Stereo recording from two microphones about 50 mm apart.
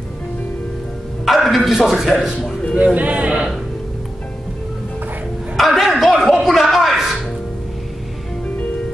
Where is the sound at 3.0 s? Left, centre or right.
Right.